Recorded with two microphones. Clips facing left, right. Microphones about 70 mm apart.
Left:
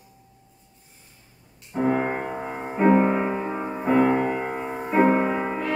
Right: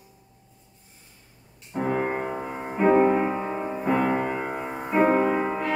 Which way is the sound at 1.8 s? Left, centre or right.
Centre.